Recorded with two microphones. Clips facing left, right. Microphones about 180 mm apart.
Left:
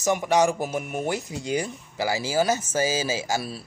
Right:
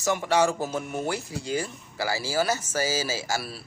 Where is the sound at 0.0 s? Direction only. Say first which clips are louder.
Left 2 dB; 15° left (ahead or behind).